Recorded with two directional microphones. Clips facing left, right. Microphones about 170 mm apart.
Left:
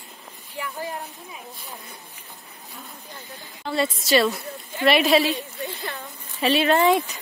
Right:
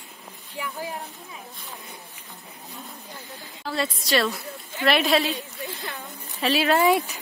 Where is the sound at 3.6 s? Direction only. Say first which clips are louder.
Left 4 dB; centre (ahead or behind).